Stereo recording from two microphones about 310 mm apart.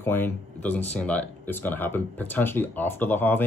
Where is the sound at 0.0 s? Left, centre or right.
Centre.